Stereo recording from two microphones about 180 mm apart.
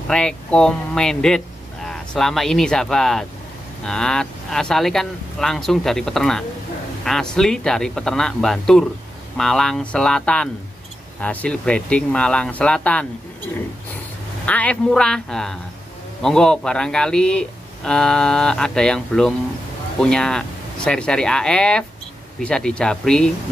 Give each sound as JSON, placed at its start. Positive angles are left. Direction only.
{"t": 0.1, "sound": "speech", "side_deg": 5}
{"t": 14.4, "sound": "speech", "side_deg": 10}